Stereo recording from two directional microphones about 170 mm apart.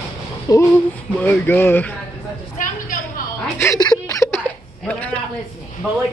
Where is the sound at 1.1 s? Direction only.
10° left (ahead or behind).